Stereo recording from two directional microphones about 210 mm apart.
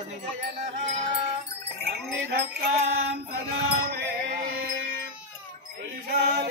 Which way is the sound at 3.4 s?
50° right (ahead or behind).